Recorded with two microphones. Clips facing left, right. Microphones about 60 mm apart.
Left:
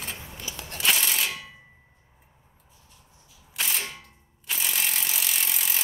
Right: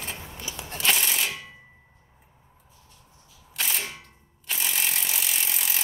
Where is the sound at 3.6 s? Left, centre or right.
Centre.